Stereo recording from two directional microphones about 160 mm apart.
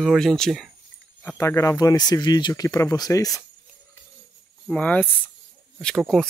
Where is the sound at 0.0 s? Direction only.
Centre (ahead or behind).